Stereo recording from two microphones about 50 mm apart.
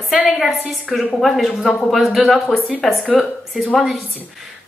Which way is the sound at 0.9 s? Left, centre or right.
Centre.